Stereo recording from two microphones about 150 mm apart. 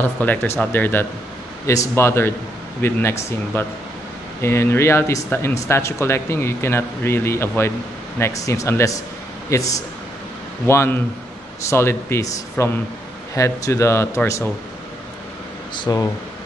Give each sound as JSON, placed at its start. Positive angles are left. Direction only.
{"t": 0.0, "sound": "a man's voice", "side_deg": 10}
{"t": 15.7, "sound": "a man's voice", "side_deg": 30}